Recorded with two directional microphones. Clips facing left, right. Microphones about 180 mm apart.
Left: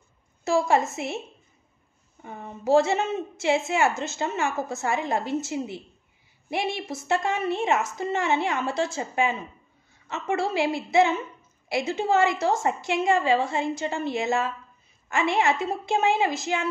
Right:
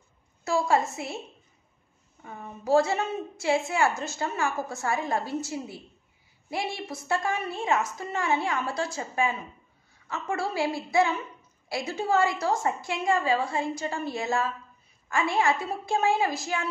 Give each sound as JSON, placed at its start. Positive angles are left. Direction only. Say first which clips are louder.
{"t": 0.5, "sound": "a woman's voice", "louder": "left 3 dB", "side_deg": 25}
{"t": 2.2, "sound": "a woman's voice", "louder": "left 4 dB", "side_deg": 25}